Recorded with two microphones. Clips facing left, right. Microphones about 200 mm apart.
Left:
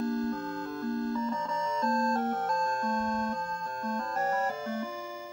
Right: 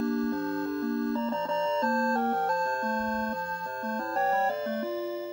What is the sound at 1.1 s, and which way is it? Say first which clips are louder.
Music: right 3 dB; 60° right (ahead or behind).